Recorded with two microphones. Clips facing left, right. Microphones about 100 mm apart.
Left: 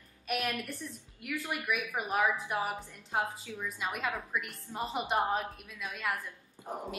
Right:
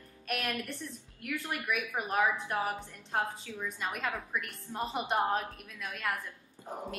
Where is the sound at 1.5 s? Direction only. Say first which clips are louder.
Left 1 dB; 5° left (ahead or behind).